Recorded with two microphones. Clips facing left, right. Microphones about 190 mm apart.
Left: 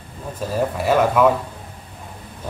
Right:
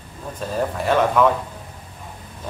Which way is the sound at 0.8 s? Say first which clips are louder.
Left 1 dB; 10° left (ahead or behind).